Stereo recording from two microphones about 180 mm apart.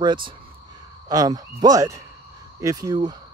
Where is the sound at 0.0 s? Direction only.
25° right (ahead or behind).